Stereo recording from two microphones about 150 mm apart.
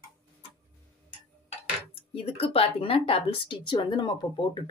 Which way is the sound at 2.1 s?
40° left (ahead or behind).